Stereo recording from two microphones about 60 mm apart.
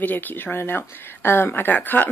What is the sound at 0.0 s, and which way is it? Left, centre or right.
Speech, left.